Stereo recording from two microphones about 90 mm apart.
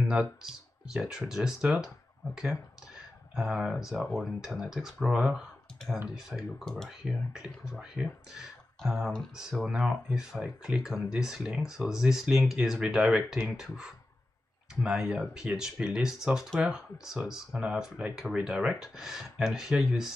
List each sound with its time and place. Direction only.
0.1 s speech: 5° right (ahead or behind)
3.3 s speech: 5° right (ahead or behind)
6.6 s speech: 5° left (ahead or behind)
7.1 s speech: 10° right (ahead or behind)